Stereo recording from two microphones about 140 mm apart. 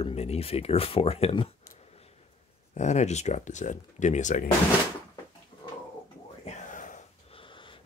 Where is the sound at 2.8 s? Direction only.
55° left (ahead or behind).